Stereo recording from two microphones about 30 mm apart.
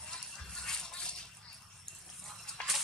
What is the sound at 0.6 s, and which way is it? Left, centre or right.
Rattle, left.